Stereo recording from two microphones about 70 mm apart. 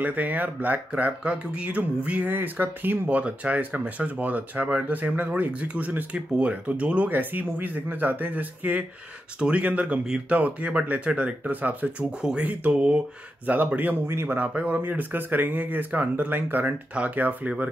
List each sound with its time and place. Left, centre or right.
0.0 s speech: right
12.2 s speech: centre
14.0 s speech: right
14.5 s speech: centre